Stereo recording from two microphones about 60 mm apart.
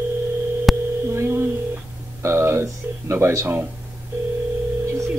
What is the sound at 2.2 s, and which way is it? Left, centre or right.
Speech, right.